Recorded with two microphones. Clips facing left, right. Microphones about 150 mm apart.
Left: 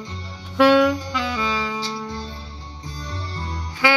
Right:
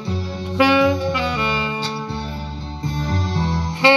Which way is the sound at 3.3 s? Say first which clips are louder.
Right 10 dB; 90° right.